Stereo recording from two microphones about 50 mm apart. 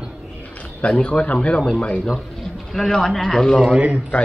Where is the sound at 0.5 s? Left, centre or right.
Left.